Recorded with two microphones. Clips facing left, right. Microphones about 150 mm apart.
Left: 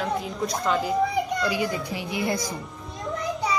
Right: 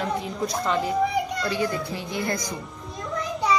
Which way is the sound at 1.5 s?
15° left (ahead or behind).